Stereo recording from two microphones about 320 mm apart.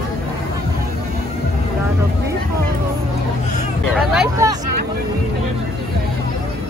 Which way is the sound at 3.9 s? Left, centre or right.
Centre.